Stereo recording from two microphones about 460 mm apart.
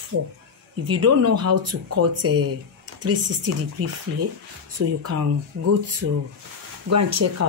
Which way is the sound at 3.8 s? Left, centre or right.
Right.